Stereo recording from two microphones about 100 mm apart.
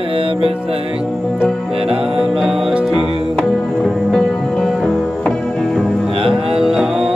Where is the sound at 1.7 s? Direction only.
70° right (ahead or behind).